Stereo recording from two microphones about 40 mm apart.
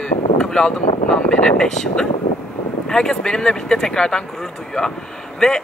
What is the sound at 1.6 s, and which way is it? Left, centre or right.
Speech, centre.